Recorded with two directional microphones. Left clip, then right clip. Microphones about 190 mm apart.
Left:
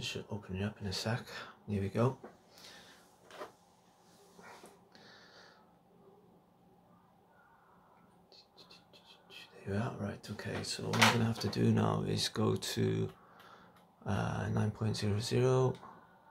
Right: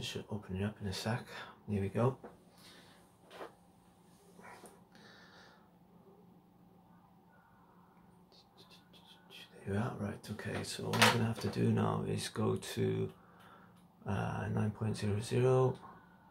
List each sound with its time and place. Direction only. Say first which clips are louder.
0.0 s speech: left 2 dB; 10° left (ahead or behind)
4.9 s a sound: left 1 dB; centre (ahead or behind)
9.3 s speech: even; centre (ahead or behind)
11.2 s speech: left 2 dB; 20° left (ahead or behind)